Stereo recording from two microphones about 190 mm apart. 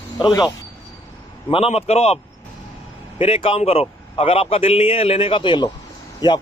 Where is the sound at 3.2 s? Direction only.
30° left (ahead or behind).